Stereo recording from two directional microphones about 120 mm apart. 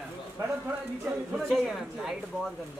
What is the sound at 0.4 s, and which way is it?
Speech, 25° right (ahead or behind).